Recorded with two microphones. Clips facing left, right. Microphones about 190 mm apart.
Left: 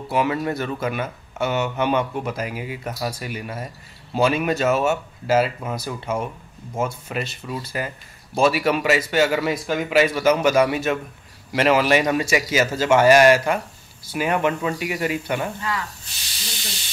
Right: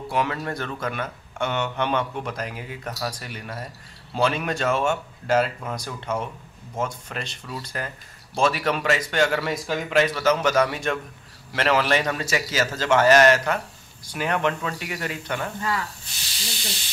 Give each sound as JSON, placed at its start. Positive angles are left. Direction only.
{"t": 0.1, "sound": "speech", "side_deg": 10}